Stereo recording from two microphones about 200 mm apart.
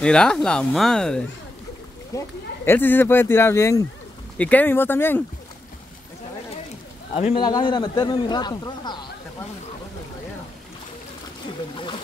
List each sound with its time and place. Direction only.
0.0 s speech: 5° left (ahead or behind)
7.2 s a man's voice: 25° left (ahead or behind)